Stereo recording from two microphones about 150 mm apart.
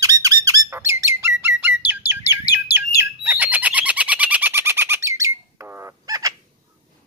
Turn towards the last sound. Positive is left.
turn(degrees=-25)  # may be behind; listen again after turning